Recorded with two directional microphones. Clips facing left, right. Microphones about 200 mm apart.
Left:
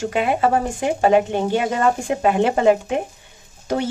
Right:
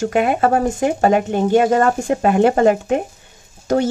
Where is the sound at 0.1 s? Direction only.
50° right (ahead or behind).